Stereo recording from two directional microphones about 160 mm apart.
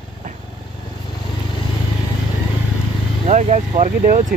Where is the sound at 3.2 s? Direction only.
45° right (ahead or behind).